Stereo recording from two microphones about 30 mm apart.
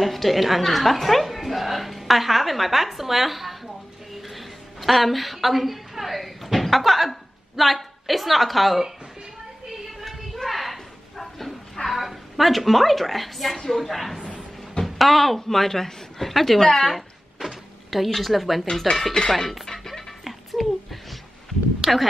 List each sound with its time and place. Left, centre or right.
0.0 s a woman's voice: centre
1.2 s a sound: centre
11.1 s bow-wow: centre
12.0 s a woman's voice: centre
16.6 s a woman's voice: centre
17.4 s a woman's voice: centre
20.2 s a sound: centre
21.8 s speech: centre